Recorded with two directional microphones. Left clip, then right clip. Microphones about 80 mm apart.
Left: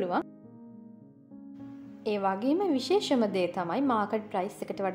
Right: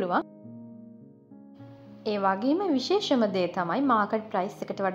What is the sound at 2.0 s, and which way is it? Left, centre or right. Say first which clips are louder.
A woman's voice: right 3 dB; centre.